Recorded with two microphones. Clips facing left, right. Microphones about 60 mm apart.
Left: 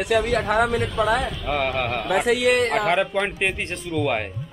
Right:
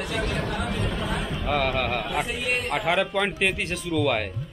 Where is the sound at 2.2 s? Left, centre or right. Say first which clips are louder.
Left 10 dB; left.